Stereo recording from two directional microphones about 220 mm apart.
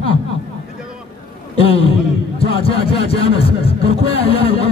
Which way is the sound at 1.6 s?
25° left (ahead or behind).